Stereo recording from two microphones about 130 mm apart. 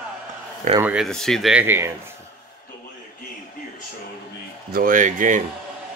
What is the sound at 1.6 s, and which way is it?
Speech, 20° right (ahead or behind).